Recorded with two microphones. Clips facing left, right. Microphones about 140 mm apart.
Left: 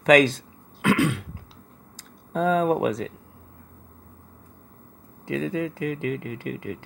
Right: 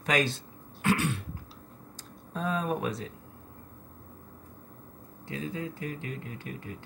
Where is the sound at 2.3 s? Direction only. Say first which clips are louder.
Left 9 dB; 90° left.